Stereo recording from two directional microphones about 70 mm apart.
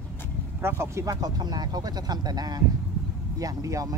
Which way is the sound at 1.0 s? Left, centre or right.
Right.